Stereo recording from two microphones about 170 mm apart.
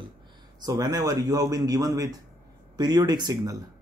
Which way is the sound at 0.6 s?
25° right (ahead or behind).